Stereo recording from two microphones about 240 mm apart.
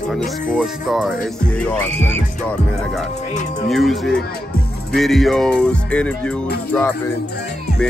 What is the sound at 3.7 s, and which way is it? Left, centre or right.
Music, centre.